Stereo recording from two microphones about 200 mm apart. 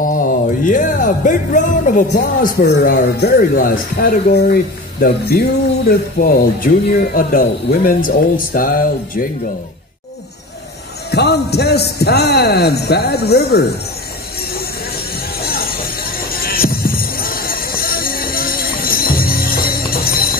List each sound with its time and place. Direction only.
0.0 s music: 45° left (ahead or behind)
5.9 s music: 45° left (ahead or behind)
11.1 s a man's voice: 55° left (ahead or behind)
15.4 s music: 50° left (ahead or behind)